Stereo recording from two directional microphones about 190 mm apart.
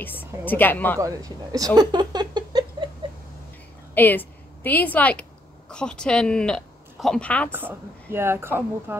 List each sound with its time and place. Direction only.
0.0 s a woman's voice: 10° left (ahead or behind)
0.9 s a woman's voice: 20° right (ahead or behind)
1.8 s a sound: 20° right (ahead or behind)
3.9 s speech: 10° left (ahead or behind)
7.5 s a woman's voice: 10° right (ahead or behind)